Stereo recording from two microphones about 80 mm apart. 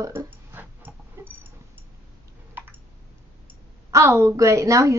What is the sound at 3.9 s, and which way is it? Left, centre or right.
A woman's voice, right.